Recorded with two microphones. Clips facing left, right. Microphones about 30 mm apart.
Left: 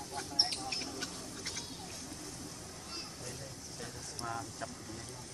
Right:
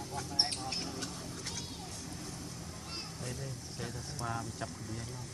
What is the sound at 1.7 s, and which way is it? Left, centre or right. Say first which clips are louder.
Vehicle: right 1 dB; centre.